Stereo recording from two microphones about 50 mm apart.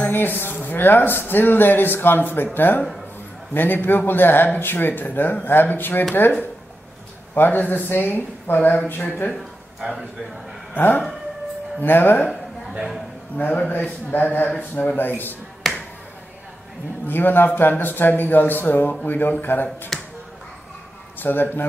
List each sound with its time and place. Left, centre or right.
0.1 s speech: left
7.3 s a man's voice: left
11.8 s a man's voice: left
13.4 s a man's voice: left
15.7 s finger snapping: centre
17.0 s a man's voice: left
21.2 s a man's voice: left